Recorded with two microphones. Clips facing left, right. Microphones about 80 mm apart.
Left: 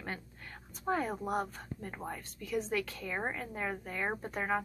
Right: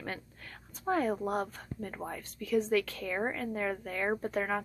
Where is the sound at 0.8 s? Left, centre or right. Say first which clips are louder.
Right 3 dB; centre.